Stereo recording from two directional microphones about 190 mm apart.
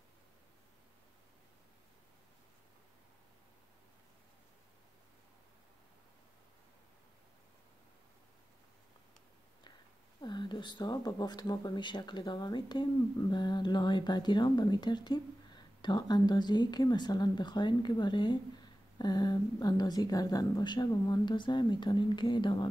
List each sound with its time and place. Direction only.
10.2 s speech: 25° left (ahead or behind)